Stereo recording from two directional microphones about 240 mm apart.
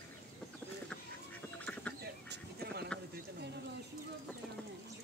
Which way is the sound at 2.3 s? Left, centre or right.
Right.